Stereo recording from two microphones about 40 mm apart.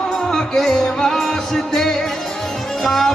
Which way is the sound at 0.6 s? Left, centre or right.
Centre.